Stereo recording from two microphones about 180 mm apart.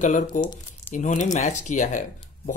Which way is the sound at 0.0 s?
45° left (ahead or behind).